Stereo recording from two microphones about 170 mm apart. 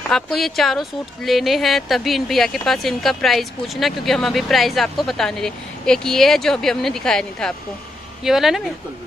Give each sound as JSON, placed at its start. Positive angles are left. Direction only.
{"t": 0.1, "sound": "a woman's voice", "side_deg": 0}